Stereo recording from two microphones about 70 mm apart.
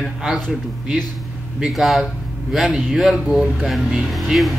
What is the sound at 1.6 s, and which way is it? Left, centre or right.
Speech, centre.